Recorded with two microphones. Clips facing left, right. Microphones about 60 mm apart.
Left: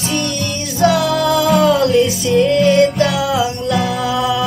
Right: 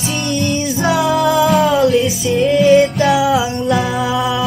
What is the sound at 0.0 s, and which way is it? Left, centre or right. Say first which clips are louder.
Music: right 1 dB; centre.